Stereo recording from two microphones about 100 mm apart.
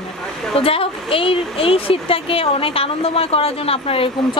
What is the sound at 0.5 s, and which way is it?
Speech, 65° left (ahead or behind).